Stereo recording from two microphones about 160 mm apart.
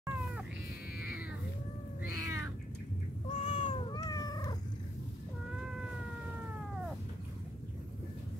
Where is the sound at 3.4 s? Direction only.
35° left (ahead or behind).